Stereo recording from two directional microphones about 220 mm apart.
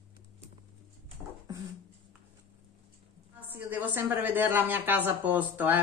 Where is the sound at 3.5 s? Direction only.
10° right (ahead or behind).